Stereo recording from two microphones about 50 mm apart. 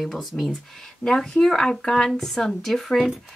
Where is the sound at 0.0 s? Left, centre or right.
Centre.